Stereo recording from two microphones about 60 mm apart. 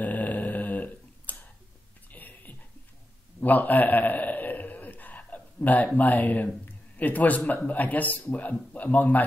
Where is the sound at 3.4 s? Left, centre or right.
Left.